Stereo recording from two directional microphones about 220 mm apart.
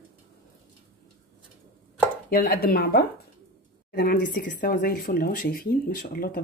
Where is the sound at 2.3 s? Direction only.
40° left (ahead or behind).